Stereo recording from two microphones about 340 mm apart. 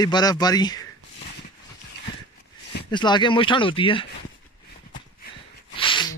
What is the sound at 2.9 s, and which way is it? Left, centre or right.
Speech, centre.